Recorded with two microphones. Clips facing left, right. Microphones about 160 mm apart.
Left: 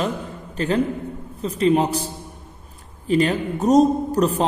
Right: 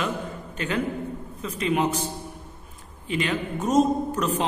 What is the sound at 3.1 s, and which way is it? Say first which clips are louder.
Speech: left 7 dB; 35° left (ahead or behind).